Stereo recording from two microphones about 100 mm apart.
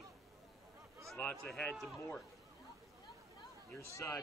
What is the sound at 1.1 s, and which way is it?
Speech, 10° left (ahead or behind).